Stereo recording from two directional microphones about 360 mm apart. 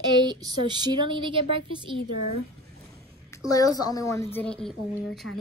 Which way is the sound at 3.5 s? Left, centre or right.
Centre.